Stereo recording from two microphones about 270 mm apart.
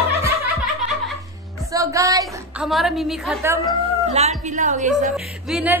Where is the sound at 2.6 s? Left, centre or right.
Centre.